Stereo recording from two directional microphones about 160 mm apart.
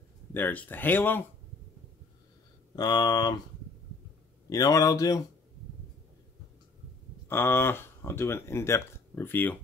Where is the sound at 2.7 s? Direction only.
25° left (ahead or behind).